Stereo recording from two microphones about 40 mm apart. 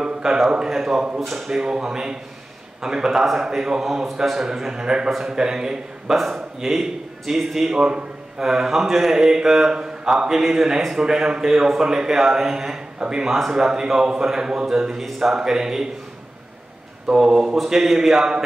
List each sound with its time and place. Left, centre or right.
0.0 s a sound: centre
0.7 s speech: centre
1.6 s speech: centre
7.8 s a sound: right
8.5 s speech: centre
13.5 s speech: centre
15.0 s speech: centre
15.3 s speech: centre
17.1 s speech: centre
17.6 s speech: centre